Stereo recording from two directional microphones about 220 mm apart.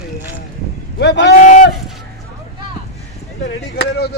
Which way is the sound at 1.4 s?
35° left (ahead or behind).